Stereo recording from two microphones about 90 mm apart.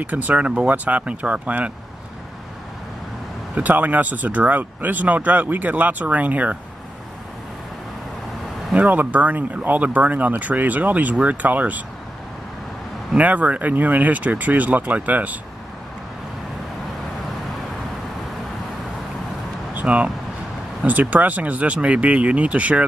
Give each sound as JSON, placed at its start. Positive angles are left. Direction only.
{"t": 0.0, "sound": "speech", "side_deg": -20}
{"t": 3.5, "sound": "speech", "side_deg": -15}
{"t": 8.7, "sound": "speech", "side_deg": -20}
{"t": 13.1, "sound": "speech", "side_deg": -15}
{"t": 19.7, "sound": "vehicle", "side_deg": -15}
{"t": 20.8, "sound": "speech", "side_deg": -20}